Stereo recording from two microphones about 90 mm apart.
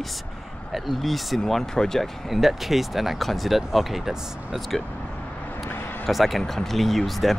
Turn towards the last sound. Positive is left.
turn(degrees=0)  # may be behind; listen again after turning